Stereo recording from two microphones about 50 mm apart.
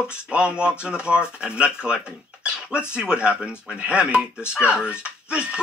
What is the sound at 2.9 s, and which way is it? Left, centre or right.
A man's voice, centre.